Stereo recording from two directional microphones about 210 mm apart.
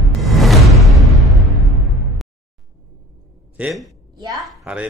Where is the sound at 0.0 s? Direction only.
Centre (ahead or behind).